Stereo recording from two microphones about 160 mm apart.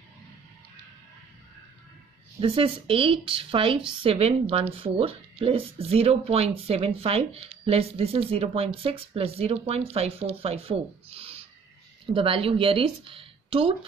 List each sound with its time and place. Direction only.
2.4 s speech: 35° right (ahead or behind)